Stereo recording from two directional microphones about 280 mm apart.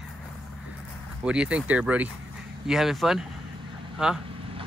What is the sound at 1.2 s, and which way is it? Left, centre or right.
Speech, centre.